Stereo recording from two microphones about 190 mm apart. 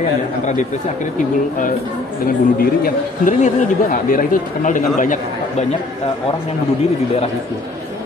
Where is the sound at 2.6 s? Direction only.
50° left (ahead or behind).